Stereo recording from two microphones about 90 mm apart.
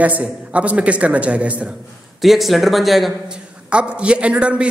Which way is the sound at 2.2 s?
Centre (ahead or behind).